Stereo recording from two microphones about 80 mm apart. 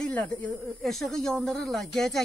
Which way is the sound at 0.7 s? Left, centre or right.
Centre.